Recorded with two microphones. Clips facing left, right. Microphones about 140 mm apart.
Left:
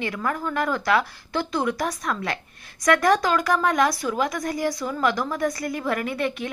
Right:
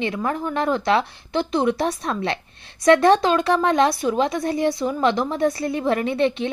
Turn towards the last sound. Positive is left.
turn(degrees=-25)  # may be behind; listen again after turning